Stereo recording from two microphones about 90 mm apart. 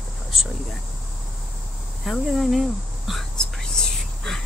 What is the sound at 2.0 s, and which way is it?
Speech, centre (ahead or behind).